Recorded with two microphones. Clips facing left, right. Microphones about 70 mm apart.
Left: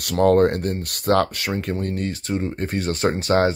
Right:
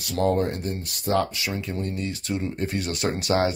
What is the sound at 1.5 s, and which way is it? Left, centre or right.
Speech, left.